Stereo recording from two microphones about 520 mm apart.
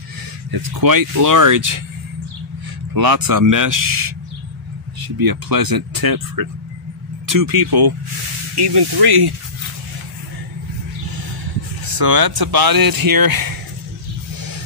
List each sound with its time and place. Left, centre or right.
0.5 s speech: right
2.9 s speech: right
11.8 s speech: right